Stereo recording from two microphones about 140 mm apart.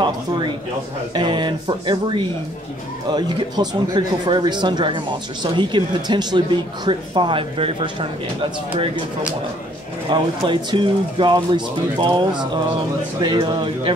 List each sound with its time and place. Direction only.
1.1 s speech: 35° right (ahead or behind)
10.0 s speech: 35° right (ahead or behind)